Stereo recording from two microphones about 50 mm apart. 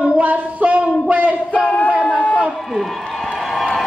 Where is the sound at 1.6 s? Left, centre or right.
Left.